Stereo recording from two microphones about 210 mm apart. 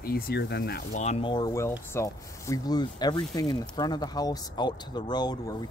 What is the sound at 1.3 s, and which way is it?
Speech, 15° left (ahead or behind).